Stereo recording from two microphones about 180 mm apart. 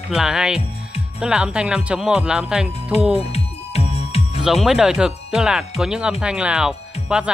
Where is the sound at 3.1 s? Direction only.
35° left (ahead or behind).